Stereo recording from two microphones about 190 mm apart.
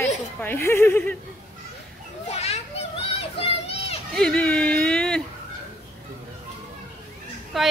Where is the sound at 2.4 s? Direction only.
35° left (ahead or behind).